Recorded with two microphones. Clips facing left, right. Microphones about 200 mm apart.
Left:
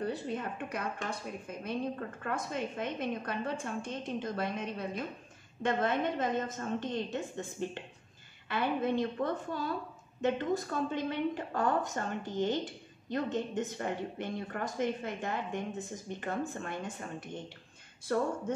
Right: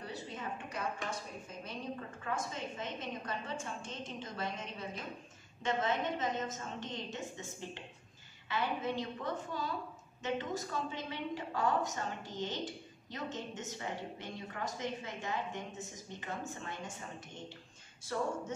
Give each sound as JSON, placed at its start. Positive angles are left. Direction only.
{"t": 0.0, "sound": "a woman's voice", "side_deg": 55}
{"t": 18.1, "sound": "a woman's voice", "side_deg": 55}